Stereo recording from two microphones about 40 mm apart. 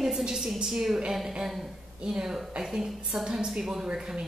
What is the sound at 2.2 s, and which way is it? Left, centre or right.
Speech, centre.